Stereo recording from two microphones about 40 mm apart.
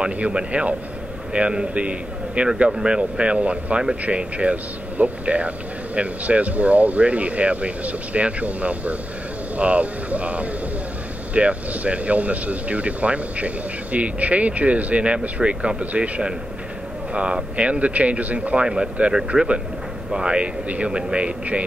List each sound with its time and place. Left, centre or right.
0.0 s a man's voice: right
17.1 s a man's voice: right